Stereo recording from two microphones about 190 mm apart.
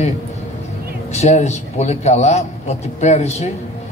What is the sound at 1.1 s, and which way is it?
A man's voice, 35° left (ahead or behind).